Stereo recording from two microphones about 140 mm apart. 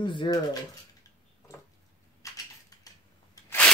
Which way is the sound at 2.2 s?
20° left (ahead or behind).